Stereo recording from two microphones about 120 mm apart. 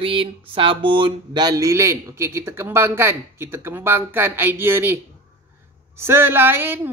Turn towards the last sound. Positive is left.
turn(degrees=-20)  # may be behind; listen again after turning